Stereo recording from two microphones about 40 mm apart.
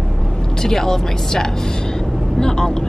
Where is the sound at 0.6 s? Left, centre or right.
Centre.